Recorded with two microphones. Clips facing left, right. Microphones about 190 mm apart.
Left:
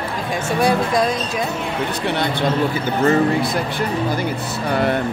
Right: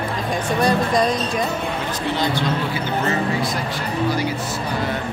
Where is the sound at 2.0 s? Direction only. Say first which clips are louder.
Right 1 dB; 65° left (ahead or behind).